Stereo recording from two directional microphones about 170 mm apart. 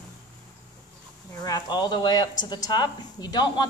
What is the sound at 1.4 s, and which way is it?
Speech, 25° left (ahead or behind).